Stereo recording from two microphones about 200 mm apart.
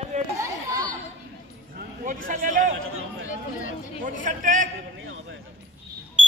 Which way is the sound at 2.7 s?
90° right.